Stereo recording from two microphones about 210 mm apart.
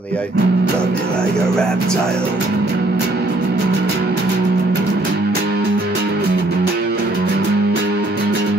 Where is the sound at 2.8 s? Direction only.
50° right (ahead or behind).